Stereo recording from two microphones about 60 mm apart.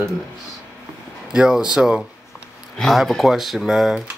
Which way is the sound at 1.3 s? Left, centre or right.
Centre.